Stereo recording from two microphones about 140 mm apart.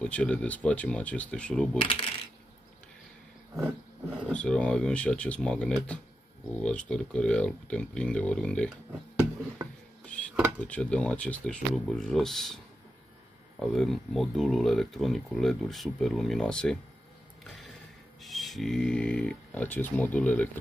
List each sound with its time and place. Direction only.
0.0 s speech: 5° left (ahead or behind)
1.8 s speech: 40° left (ahead or behind)
4.3 s speech: 10° left (ahead or behind)
10.0 s a sound: 10° left (ahead or behind)
10.6 s speech: 10° left (ahead or behind)
13.6 s speech: centre (ahead or behind)
18.2 s speech: centre (ahead or behind)